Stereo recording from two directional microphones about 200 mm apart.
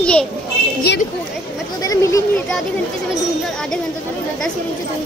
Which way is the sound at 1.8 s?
15° left (ahead or behind).